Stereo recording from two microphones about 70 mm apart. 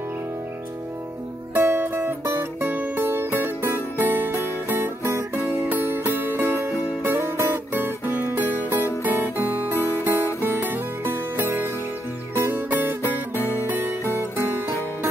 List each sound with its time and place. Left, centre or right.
1.5 s music: right